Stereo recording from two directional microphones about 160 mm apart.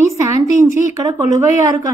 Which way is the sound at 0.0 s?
20° right (ahead or behind).